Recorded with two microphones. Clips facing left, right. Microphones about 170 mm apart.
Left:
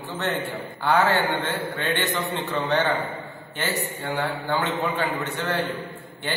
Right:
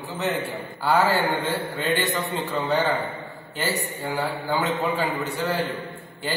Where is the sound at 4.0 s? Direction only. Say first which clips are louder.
Even; 10° right (ahead or behind).